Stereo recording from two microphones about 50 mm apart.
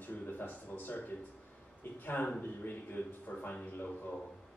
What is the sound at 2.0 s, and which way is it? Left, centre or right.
Speech, left.